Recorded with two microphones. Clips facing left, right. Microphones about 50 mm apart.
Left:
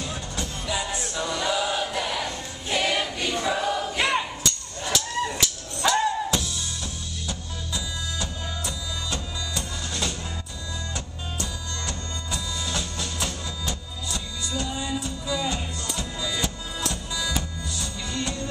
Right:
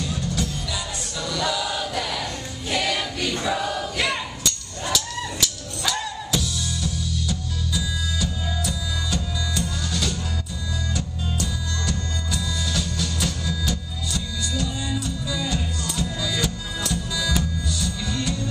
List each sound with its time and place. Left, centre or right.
0.0 s music: left
3.3 s choir: centre
4.9 s music: left